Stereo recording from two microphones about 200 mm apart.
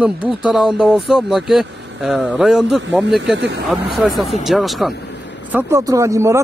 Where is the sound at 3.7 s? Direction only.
Centre (ahead or behind).